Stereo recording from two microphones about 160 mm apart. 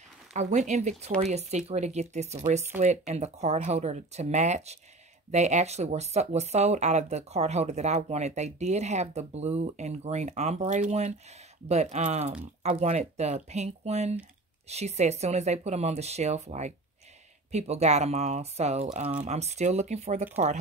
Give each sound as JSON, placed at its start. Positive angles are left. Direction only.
{"t": 0.3, "sound": "speech", "side_deg": -45}